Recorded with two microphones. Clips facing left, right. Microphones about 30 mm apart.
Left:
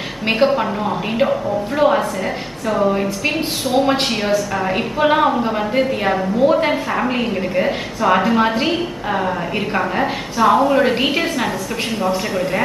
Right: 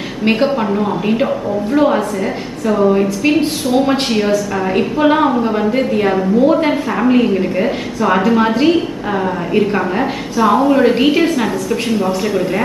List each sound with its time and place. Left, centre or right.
0.2 s a woman's voice: centre